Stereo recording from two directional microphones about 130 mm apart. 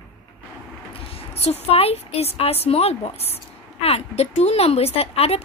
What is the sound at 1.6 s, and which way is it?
A woman's voice, 50° left (ahead or behind).